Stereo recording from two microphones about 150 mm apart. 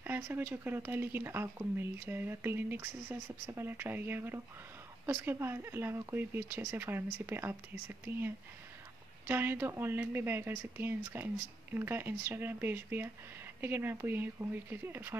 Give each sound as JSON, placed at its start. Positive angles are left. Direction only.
{"t": 0.0, "sound": "speech", "side_deg": -15}
{"t": 9.3, "sound": "speech", "side_deg": -15}